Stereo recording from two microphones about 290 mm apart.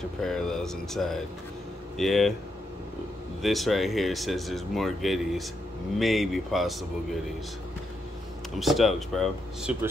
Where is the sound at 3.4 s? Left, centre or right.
Centre.